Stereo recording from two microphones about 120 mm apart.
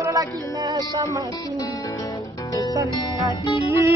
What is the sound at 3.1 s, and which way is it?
Music, 30° left (ahead or behind).